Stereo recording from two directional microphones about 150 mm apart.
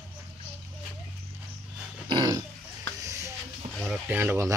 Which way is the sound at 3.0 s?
20° right (ahead or behind).